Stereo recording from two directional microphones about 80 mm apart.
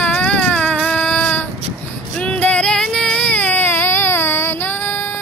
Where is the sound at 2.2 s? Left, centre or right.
Centre.